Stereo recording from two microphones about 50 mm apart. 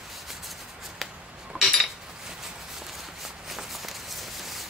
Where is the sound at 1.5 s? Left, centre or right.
Right.